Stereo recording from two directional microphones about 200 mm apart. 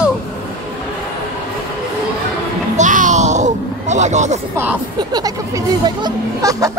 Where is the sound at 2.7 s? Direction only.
40° right (ahead or behind).